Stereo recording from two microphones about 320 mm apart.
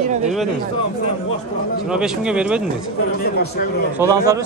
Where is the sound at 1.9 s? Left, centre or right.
Centre.